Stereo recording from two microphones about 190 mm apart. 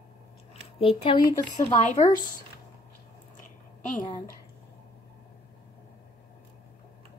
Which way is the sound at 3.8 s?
40° left (ahead or behind).